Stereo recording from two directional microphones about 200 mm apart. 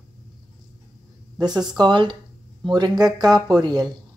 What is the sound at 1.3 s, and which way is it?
Speech, 20° right (ahead or behind).